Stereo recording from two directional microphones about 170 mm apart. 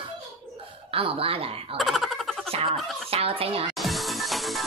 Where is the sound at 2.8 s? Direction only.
Centre (ahead or behind).